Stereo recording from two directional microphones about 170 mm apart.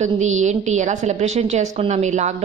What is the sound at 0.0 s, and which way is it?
A woman's voice, 45° right (ahead or behind).